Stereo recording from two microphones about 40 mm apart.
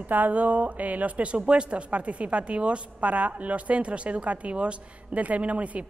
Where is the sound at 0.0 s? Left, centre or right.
Right.